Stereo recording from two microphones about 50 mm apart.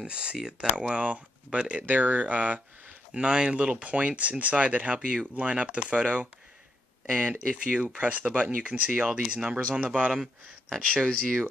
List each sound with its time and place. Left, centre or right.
0.0 s speech: right
3.2 s speech: right
10.1 s speech: centre